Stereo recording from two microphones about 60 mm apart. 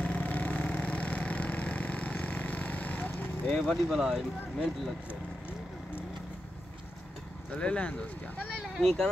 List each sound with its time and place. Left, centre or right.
0.0 s vehicle: left
3.4 s speech: centre
3.9 s speech: centre
7.5 s speech: centre